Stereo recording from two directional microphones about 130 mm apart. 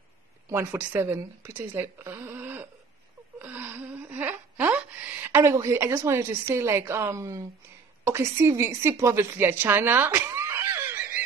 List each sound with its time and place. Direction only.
0.5 s speech: 15° right (ahead or behind)
3.3 s a sound: 15° right (ahead or behind)
6.5 s a woman's voice: 20° right (ahead or behind)